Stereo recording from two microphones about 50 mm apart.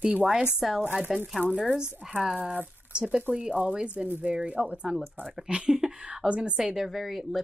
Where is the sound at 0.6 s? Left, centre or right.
Centre.